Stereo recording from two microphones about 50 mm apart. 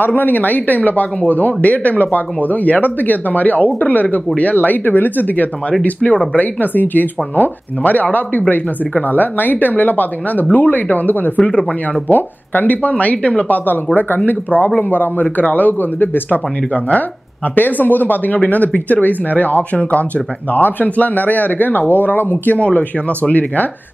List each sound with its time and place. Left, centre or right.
0.0 s speech: left
12.1 s speech: left
12.9 s speech: left
13.9 s speech: left
22.6 s speech: left